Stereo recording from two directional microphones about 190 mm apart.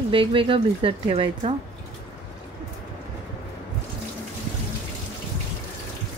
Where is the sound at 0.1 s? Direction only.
25° right (ahead or behind).